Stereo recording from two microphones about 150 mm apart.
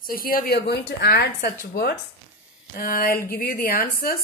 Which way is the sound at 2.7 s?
70° left (ahead or behind).